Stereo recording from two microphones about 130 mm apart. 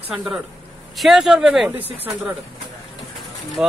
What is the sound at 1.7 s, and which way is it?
Speech, 15° right (ahead or behind).